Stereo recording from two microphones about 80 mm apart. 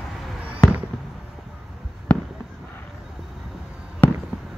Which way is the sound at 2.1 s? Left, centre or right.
Centre.